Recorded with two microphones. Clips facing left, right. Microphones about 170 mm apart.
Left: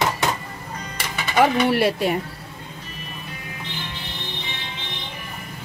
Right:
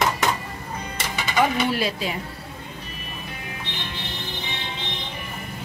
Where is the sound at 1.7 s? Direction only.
65° left (ahead or behind).